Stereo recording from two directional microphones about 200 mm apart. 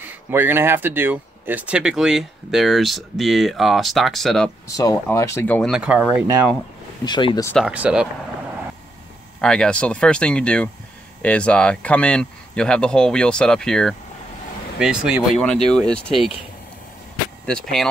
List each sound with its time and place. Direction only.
0.0 s speech: 10° right (ahead or behind)
5.0 s speech: 15° left (ahead or behind)
5.7 s speech: 5° right (ahead or behind)
7.1 s speech: 20° left (ahead or behind)
7.5 s speech: 5° right (ahead or behind)
9.4 s speech: 5° left (ahead or behind)
17.5 s speech: 5° left (ahead or behind)